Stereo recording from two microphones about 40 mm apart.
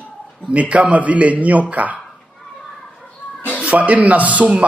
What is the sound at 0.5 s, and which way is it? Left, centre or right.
A man's voice, right.